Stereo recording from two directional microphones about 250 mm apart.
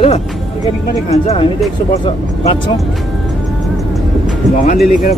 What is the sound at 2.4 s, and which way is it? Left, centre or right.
Speech, left.